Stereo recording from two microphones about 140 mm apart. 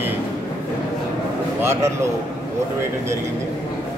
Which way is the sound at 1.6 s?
20° right (ahead or behind).